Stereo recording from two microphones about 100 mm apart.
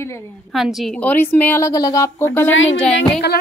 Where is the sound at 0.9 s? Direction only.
15° left (ahead or behind).